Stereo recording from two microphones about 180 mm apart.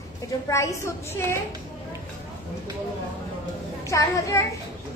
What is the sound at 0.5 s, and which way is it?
Speech, 15° left (ahead or behind).